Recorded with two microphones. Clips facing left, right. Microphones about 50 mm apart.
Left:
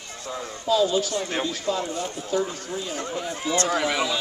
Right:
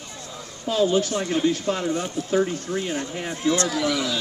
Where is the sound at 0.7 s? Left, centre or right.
Right.